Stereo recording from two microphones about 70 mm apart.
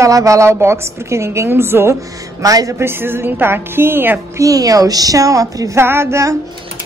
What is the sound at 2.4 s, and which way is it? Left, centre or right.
Speech, right.